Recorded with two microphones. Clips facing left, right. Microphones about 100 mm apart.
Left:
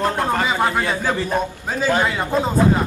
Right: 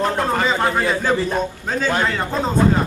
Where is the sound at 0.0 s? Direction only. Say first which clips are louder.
Right 1 dB; 5° left (ahead or behind).